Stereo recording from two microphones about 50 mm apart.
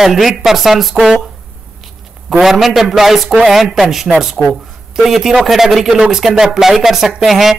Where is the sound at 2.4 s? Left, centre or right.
Centre.